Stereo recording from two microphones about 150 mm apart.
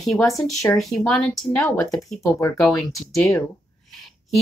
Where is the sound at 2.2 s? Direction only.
20° left (ahead or behind).